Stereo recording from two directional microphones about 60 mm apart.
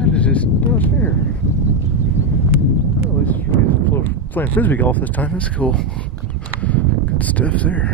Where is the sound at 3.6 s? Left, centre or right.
Left.